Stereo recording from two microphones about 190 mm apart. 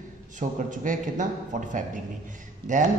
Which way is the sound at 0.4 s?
45° right (ahead or behind).